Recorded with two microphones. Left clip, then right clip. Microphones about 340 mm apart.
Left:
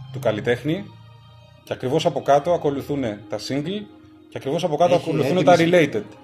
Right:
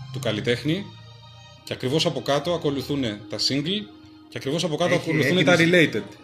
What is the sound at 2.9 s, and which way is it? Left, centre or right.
Speech, left.